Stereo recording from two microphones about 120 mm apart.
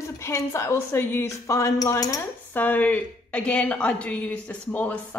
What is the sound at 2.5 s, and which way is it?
A woman's voice, 15° left (ahead or behind).